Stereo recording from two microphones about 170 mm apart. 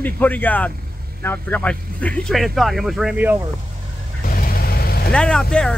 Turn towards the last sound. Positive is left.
turn(degrees=5)  # may be behind; listen again after turning